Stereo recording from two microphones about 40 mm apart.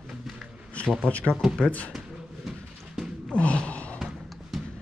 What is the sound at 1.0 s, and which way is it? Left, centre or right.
Speech, left.